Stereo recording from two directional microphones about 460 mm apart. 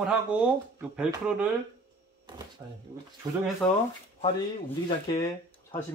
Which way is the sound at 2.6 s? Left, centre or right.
Centre.